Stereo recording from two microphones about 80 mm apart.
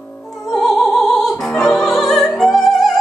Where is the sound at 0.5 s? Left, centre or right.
Centre.